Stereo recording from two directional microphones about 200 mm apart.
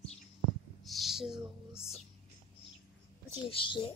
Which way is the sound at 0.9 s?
Centre (ahead or behind).